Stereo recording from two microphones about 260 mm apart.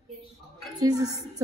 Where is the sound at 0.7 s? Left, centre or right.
Centre.